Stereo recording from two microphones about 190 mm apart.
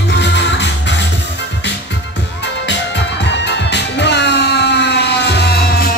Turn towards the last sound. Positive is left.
turn(degrees=55)  # may be behind; listen again after turning